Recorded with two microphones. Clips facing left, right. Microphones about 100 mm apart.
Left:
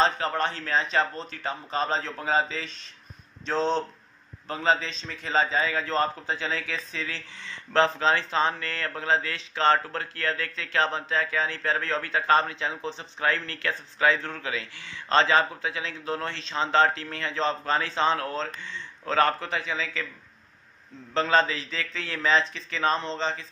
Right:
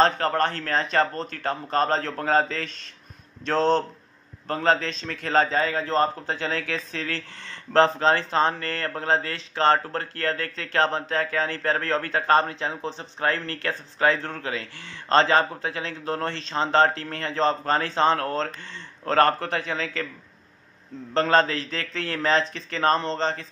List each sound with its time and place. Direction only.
0.0 s speech: 50° right (ahead or behind)
5.8 s a man's voice: 35° right (ahead or behind)
6.2 s speech: 55° right (ahead or behind)
21.1 s speech: 50° right (ahead or behind)